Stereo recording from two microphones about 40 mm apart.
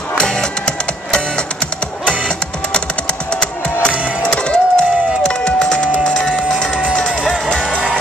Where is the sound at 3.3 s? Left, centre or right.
Left.